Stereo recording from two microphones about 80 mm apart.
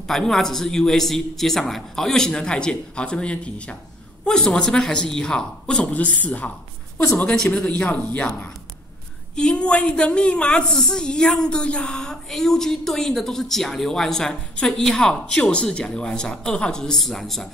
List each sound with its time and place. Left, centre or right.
0.0 s a woman's voice: centre
7.3 s a woman's voice: centre
7.6 s a woman's voice: centre